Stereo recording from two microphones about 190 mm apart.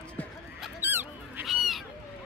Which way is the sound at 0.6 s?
10° right (ahead or behind).